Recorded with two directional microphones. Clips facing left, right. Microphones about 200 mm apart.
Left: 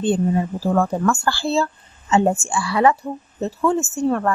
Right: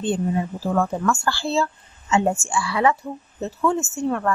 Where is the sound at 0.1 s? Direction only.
35° left (ahead or behind).